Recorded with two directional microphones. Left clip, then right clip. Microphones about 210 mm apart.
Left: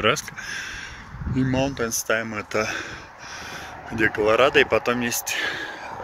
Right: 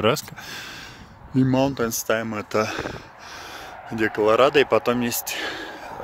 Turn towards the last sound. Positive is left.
turn(degrees=-35)  # may be behind; listen again after turning